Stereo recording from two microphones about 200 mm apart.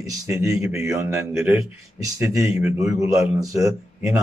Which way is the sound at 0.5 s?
15° right (ahead or behind).